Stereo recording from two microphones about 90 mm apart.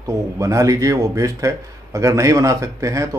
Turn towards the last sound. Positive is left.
turn(degrees=-35)  # may be behind; listen again after turning